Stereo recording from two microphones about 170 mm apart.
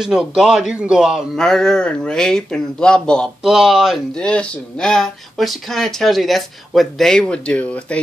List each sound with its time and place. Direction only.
0.0 s a man's voice: 5° right (ahead or behind)